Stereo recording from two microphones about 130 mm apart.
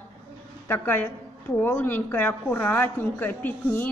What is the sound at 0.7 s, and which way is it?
A woman's voice, 15° left (ahead or behind).